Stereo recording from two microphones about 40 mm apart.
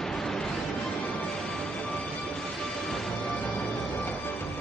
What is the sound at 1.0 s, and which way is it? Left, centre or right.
Music, left.